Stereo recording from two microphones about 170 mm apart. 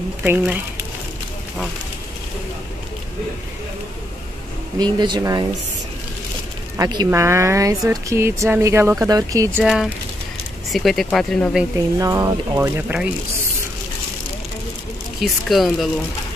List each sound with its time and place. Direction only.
0.2 s speech: 10° right (ahead or behind)
4.7 s speech: 25° right (ahead or behind)
6.8 s speech: 25° right (ahead or behind)
10.7 s speech: centre (ahead or behind)
12.0 s speech: 20° right (ahead or behind)
15.1 s speech: centre (ahead or behind)